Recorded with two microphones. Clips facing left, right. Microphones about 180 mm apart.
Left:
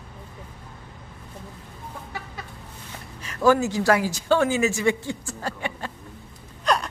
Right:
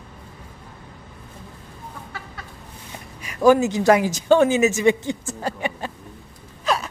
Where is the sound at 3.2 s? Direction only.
15° right (ahead or behind).